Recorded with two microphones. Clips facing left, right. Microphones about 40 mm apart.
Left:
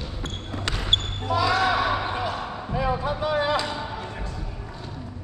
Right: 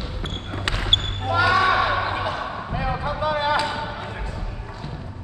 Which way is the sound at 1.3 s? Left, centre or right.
Right.